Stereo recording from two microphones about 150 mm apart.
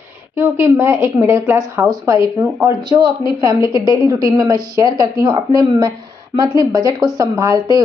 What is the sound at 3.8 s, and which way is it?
A woman's voice, 20° right (ahead or behind).